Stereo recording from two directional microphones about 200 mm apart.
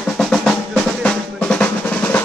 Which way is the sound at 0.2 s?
Centre (ahead or behind).